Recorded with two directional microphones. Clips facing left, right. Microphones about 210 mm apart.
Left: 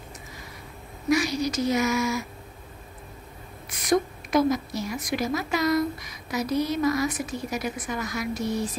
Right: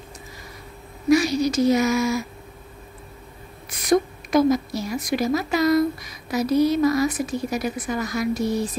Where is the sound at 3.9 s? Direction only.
35° right (ahead or behind).